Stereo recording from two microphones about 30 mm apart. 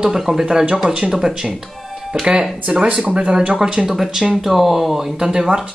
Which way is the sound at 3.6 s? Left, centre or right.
Right.